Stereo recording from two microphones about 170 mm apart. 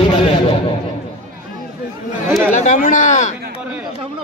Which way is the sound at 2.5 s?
45° left (ahead or behind).